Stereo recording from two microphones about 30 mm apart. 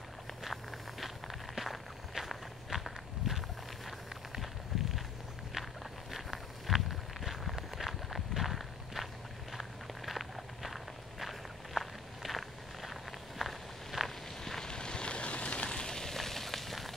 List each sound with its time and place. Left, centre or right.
0.4 s walk: centre
4.4 s a sound: centre
6.1 s walk: centre
14.4 s vehicle: centre
14.7 s vehicle: left
16.0 s fire: centre